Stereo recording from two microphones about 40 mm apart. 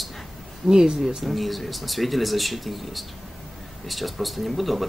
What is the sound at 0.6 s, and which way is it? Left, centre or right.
Speech, centre.